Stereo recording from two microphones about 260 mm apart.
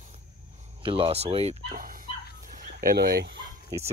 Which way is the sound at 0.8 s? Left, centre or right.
Right.